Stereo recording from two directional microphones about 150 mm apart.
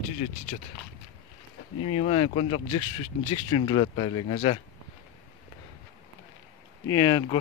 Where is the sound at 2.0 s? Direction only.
35° left (ahead or behind).